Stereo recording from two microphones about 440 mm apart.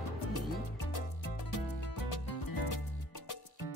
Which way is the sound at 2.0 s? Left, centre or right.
Left.